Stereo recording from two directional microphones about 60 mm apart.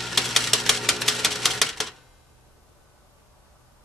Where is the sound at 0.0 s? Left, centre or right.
Centre.